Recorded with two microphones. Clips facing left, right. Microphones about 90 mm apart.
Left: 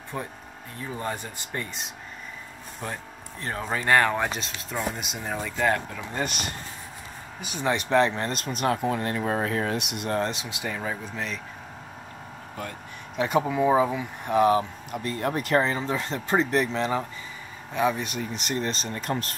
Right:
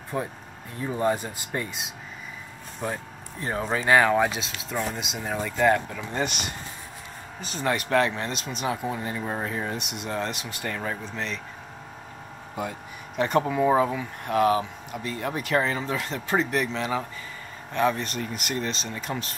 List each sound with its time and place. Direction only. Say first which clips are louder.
0.1 s speech: right 4 dB; centre (ahead or behind)
7.7 s speech: left 2 dB; 25° left (ahead or behind)
8.3 s speech: left 3 dB; centre (ahead or behind)
12.5 s speech: right 5 dB; 5° right (ahead or behind)
17.7 s speech: right 1 dB; 10° left (ahead or behind)
18.6 s speech: left 2 dB; 40° left (ahead or behind)
18.9 s speech: left 2 dB; centre (ahead or behind)